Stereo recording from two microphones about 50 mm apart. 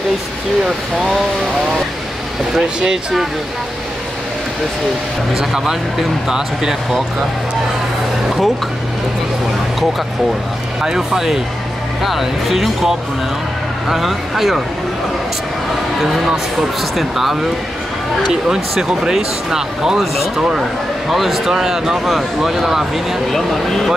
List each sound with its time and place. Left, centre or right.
2.8 s speech: centre
5.3 s speech: centre
10.8 s speech: centre
16.0 s speech: centre
21.1 s speech: centre
23.3 s speech: centre